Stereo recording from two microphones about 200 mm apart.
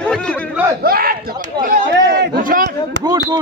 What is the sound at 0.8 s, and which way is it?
A man's voice, 45° right (ahead or behind).